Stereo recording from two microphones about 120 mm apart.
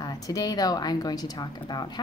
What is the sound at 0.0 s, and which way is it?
Speech, 30° left (ahead or behind).